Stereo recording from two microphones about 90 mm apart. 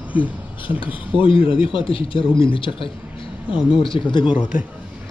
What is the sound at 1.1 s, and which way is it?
Speech, 80° left.